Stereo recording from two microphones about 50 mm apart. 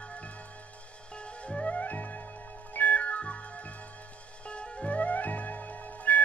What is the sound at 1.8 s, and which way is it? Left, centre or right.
Music, left.